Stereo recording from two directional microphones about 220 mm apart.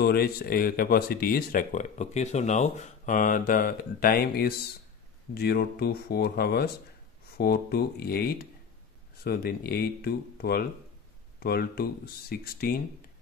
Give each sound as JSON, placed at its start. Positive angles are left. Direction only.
{"t": 0.0, "sound": "speech", "side_deg": 45}